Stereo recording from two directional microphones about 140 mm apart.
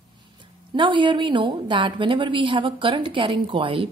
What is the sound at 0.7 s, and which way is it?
Speech, 35° right (ahead or behind).